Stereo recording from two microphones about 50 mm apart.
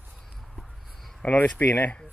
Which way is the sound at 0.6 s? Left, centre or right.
Centre.